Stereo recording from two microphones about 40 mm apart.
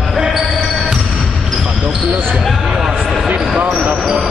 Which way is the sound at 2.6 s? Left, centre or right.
Centre.